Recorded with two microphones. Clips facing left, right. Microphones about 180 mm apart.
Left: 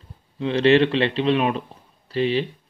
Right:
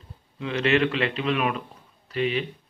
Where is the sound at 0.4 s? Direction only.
30° left (ahead or behind).